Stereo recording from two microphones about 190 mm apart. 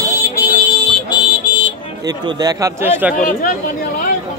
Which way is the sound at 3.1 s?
45° left (ahead or behind).